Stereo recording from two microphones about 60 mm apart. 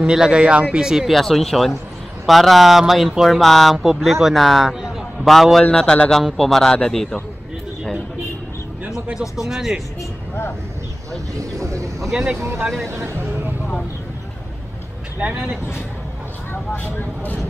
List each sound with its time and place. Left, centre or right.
0.0 s speech: centre
1.1 s a man's voice: centre
5.6 s speech: centre
9.4 s speech: centre
11.3 s speech: right
12.1 s speech: centre
12.8 s speech: right
15.1 s speech: right